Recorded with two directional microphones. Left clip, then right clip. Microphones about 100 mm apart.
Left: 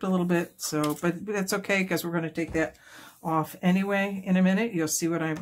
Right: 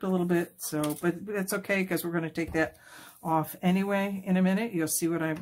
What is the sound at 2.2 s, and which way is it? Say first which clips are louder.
Speech: left 1 dB; 5° right (ahead or behind).